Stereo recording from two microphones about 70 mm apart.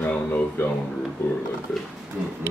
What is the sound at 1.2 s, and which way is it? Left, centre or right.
Speech, left.